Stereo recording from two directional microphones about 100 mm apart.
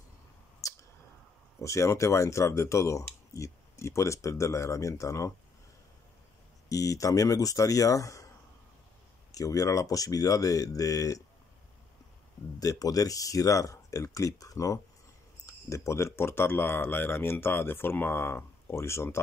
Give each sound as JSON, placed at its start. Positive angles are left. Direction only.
{"t": 1.6, "sound": "speech", "side_deg": 30}
{"t": 6.7, "sound": "speech", "side_deg": 35}
{"t": 9.3, "sound": "speech", "side_deg": 35}
{"t": 12.5, "sound": "speech", "side_deg": 35}